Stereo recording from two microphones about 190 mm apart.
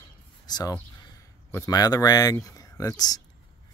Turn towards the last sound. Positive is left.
turn(degrees=20)  # may be behind; listen again after turning